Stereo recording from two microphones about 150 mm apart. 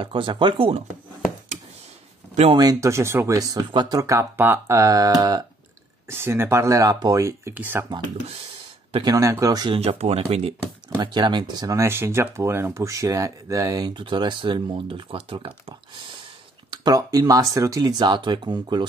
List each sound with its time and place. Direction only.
0.0 s speech: 35° right (ahead or behind)
2.5 s speech: 25° right (ahead or behind)
9.0 s speech: 20° right (ahead or behind)
9.8 s speech: 45° right (ahead or behind)
11.0 s speech: 30° right (ahead or behind)